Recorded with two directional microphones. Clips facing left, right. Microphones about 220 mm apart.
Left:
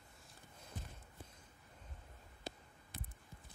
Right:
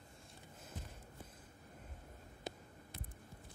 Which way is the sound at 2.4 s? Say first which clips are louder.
Right 2 dB; 20° right (ahead or behind).